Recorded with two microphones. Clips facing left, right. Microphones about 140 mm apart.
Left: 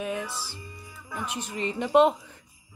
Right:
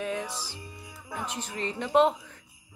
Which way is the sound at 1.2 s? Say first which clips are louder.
Left 3 dB; 10° left (ahead or behind).